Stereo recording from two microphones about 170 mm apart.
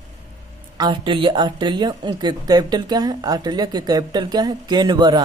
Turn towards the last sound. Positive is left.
turn(degrees=-25)  # may be behind; listen again after turning